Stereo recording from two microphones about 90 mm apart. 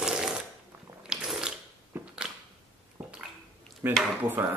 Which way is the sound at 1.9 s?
25° right (ahead or behind).